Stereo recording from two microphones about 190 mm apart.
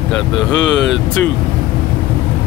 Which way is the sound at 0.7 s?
70° left (ahead or behind).